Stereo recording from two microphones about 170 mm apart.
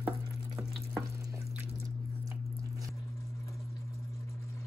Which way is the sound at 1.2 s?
15° right (ahead or behind).